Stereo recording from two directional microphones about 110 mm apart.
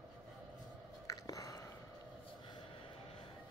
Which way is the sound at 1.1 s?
35° left (ahead or behind).